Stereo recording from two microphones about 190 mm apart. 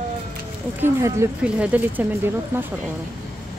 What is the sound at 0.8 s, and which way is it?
A woman's voice, 15° right (ahead or behind).